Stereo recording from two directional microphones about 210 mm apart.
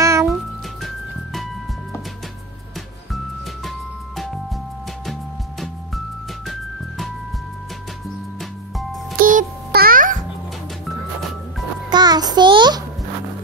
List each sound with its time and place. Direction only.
0.0 s music: 15° right (ahead or behind)
5.6 s music: centre (ahead or behind)
9.2 s music: 40° right (ahead or behind)
11.9 s music: 20° right (ahead or behind)